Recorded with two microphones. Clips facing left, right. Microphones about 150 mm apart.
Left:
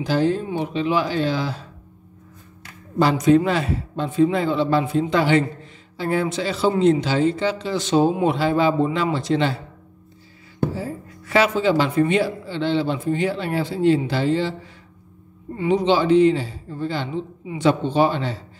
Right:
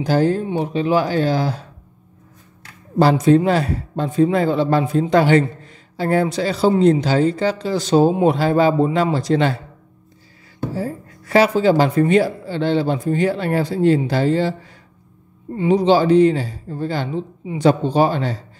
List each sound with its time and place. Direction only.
0.0 s a woman's voice: 45° right (ahead or behind)
3.0 s a woman's voice: 35° right (ahead or behind)
10.8 s a woman's voice: 40° right (ahead or behind)
15.5 s a woman's voice: 30° right (ahead or behind)